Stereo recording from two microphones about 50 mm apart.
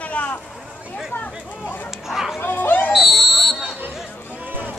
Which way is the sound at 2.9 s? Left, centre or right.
Centre.